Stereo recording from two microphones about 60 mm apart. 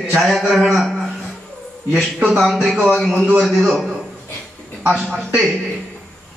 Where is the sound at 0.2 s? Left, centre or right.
Centre.